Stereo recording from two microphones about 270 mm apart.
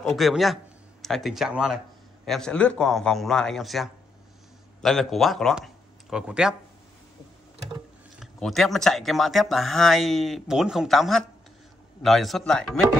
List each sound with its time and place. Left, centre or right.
0.0 s speech: centre
8.2 s speech: centre